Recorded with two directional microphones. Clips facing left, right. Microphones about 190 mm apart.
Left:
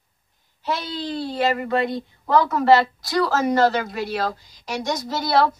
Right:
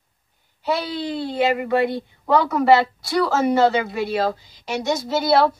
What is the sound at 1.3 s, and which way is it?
A woman's voice, 10° right (ahead or behind).